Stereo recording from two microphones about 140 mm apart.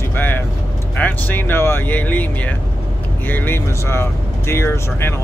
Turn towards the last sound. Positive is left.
turn(degrees=15)  # may be behind; listen again after turning